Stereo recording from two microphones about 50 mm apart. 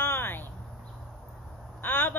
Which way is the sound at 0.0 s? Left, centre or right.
Left.